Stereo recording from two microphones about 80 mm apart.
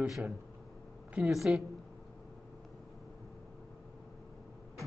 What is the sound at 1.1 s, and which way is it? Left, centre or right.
Speech, centre.